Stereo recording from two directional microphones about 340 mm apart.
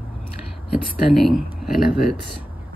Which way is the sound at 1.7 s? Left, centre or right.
Left.